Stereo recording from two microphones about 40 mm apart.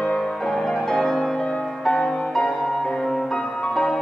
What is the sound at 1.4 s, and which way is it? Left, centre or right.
Music, centre.